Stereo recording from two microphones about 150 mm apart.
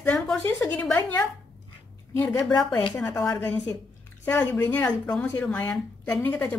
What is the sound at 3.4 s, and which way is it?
Speech, 15° left (ahead or behind).